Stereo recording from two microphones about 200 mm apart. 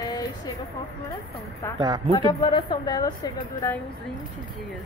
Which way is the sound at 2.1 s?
20° left (ahead or behind).